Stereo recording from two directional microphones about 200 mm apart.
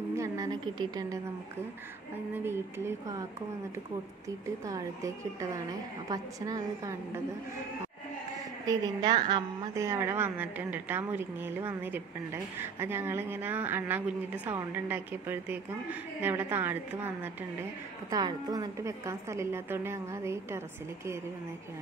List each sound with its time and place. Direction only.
0.1 s a sound: 15° right (ahead or behind)
2.3 s a woman's voice: 10° right (ahead or behind)
4.6 s a woman's voice: 15° right (ahead or behind)
8.6 s a woman's voice: 20° right (ahead or behind)